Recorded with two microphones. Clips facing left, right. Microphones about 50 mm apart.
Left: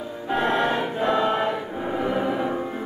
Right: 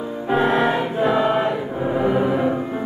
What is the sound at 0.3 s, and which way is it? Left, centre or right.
Music, centre.